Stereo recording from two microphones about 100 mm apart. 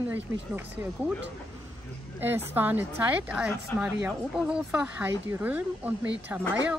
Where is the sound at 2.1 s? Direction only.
20° right (ahead or behind).